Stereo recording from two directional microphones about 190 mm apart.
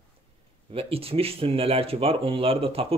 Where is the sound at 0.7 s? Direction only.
30° right (ahead or behind).